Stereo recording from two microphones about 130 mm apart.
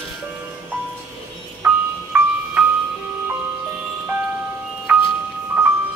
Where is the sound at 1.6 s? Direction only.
15° right (ahead or behind).